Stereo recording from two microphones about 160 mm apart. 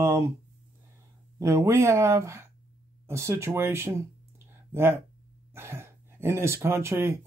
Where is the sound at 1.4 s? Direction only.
15° right (ahead or behind).